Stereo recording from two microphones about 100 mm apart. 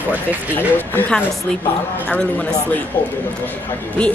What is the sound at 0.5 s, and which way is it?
Speech, 20° left (ahead or behind).